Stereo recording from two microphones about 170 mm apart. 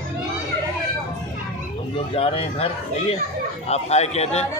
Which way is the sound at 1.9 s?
35° left (ahead or behind).